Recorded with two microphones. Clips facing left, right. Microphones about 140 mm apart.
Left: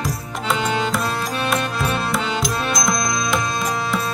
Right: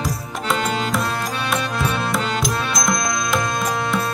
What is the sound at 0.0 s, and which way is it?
Tabla, centre (ahead or behind).